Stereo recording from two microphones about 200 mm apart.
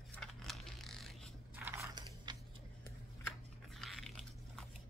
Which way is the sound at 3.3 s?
Centre (ahead or behind).